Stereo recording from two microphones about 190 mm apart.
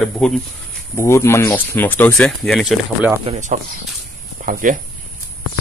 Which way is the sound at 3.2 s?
40° right (ahead or behind).